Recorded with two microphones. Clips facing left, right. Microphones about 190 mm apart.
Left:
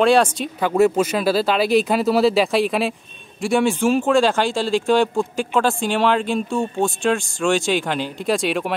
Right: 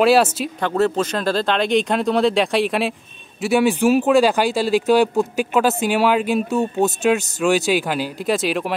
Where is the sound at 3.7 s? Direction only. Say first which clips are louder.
Right 2 dB; 15° right (ahead or behind).